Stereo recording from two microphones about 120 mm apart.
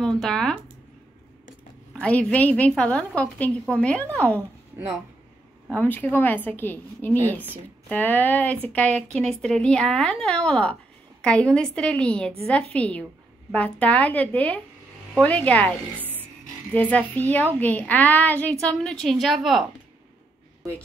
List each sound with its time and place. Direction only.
0.0 s speech: 5° left (ahead or behind)
2.0 s speech: 10° left (ahead or behind)
5.8 s speech: 15° left (ahead or behind)
16.0 s music: 15° right (ahead or behind)
16.7 s speech: 10° left (ahead or behind)